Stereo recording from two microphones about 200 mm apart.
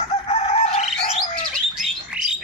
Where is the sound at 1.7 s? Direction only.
5° right (ahead or behind).